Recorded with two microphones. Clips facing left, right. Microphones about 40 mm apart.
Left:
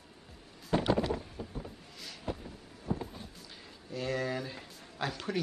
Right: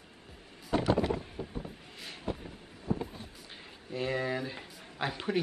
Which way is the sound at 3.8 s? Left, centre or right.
Right.